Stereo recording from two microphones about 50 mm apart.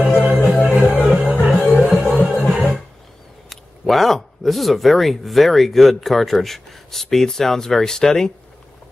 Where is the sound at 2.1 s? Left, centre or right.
Right.